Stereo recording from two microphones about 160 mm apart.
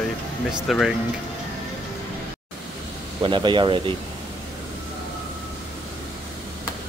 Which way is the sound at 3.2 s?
30° right (ahead or behind).